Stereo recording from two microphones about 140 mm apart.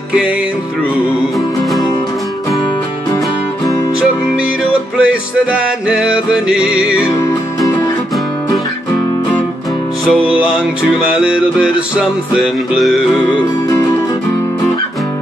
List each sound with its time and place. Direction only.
4.9 s music: 10° right (ahead or behind)
7.2 s music: 25° left (ahead or behind)
10.2 s music: 5° right (ahead or behind)